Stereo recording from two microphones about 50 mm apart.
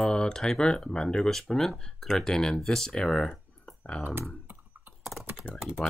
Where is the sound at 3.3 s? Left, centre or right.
Left.